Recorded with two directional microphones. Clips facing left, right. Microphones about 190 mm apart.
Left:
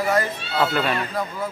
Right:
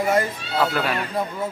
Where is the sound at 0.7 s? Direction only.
5° right (ahead or behind).